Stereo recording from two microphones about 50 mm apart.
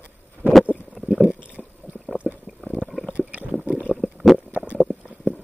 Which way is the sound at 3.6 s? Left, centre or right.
Right.